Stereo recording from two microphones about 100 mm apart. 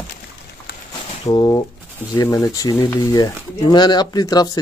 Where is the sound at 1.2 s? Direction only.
35° left (ahead or behind).